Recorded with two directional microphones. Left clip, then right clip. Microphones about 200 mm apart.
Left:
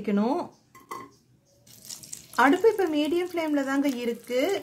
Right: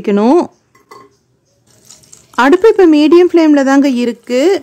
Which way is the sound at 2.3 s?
50° right (ahead or behind).